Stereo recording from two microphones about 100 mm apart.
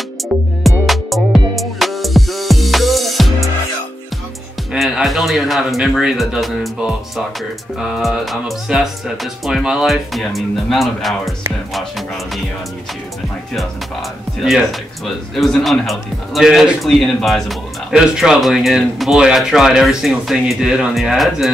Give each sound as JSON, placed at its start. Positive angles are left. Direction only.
{"t": 0.3, "sound": "music", "side_deg": 0}
{"t": 4.7, "sound": "a man's voice", "side_deg": 0}
{"t": 7.8, "sound": "a man's voice", "side_deg": 0}
{"t": 14.4, "sound": "a man's voice", "side_deg": 0}